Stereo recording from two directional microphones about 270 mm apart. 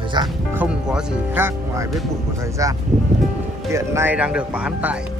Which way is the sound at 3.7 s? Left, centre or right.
Centre.